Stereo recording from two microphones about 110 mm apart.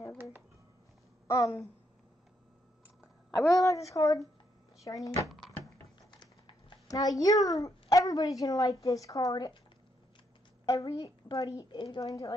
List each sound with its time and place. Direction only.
1.2 s a sound: 30° left (ahead or behind)
3.4 s a woman's voice: 30° left (ahead or behind)
6.9 s a woman's voice: 30° left (ahead or behind)
10.6 s a sound: 30° left (ahead or behind)
10.9 s a woman's voice: 35° left (ahead or behind)
11.7 s a woman's voice: 45° left (ahead or behind)
12.0 s a woman's voice: 35° left (ahead or behind)